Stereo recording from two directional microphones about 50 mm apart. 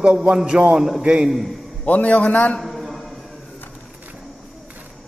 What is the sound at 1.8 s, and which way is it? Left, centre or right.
Speech, left.